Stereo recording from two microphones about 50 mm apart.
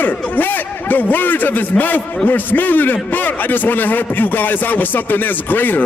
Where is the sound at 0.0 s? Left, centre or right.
Left.